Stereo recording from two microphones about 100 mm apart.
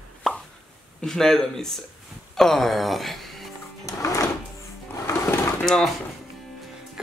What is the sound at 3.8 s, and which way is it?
Drawer open or close, 30° left (ahead or behind).